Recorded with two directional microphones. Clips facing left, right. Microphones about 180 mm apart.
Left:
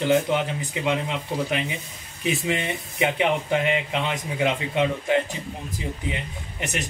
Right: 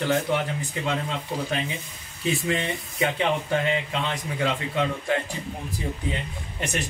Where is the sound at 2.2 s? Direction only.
20° left (ahead or behind).